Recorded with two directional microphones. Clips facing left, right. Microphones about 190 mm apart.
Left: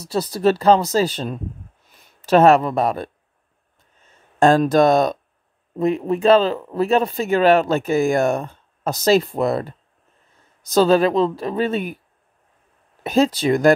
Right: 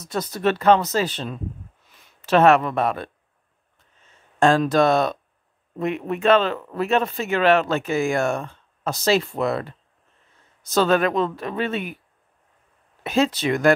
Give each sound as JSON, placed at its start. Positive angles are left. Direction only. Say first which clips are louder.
{"t": 0.0, "sound": "speech", "louder": "left 4 dB", "side_deg": 35}
{"t": 4.4, "sound": "speech", "louder": "left 3 dB", "side_deg": 40}
{"t": 13.0, "sound": "speech", "louder": "left 4 dB", "side_deg": 40}